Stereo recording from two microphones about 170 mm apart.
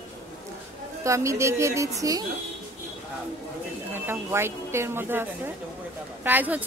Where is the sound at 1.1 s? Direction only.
15° right (ahead or behind).